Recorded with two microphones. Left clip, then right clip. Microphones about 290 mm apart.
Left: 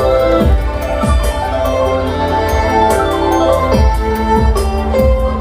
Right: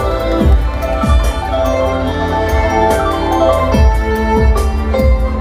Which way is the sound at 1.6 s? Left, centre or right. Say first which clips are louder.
Even; left.